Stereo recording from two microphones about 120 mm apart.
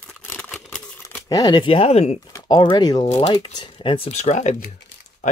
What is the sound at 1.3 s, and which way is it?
Speech, 35° left (ahead or behind).